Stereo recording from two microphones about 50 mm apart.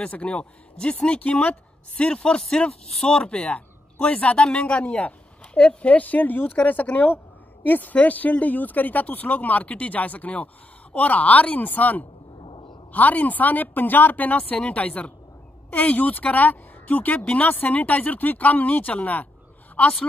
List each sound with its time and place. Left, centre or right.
0.0 s speech: left
4.5 s speech: centre
4.7 s speech: left